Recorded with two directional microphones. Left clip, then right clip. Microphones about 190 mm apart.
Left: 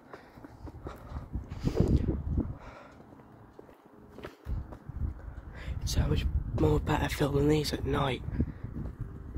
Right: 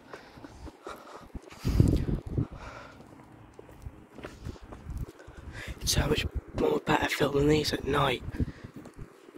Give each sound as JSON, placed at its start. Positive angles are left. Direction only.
{"t": 1.5, "sound": "a sound", "side_deg": 0}
{"t": 5.9, "sound": "speech", "side_deg": -25}
{"t": 6.5, "sound": "speech", "side_deg": 10}